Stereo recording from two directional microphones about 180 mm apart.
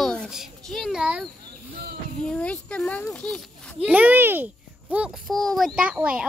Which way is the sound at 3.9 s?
10° right (ahead or behind).